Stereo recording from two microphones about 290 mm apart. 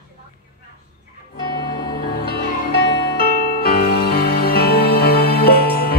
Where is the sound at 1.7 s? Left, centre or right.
Left.